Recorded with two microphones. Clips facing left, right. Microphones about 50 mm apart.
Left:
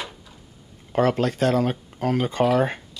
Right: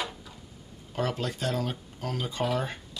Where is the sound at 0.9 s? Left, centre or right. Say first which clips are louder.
Left 10 dB; left.